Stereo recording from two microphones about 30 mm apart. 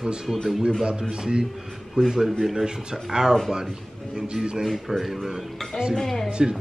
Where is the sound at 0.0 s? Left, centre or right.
Right.